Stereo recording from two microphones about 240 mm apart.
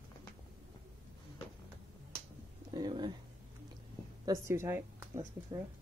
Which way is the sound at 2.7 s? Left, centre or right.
Centre.